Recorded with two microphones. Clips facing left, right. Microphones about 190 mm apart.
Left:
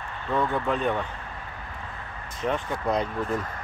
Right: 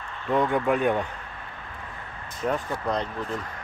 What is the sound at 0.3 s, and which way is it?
Speech, 10° right (ahead or behind).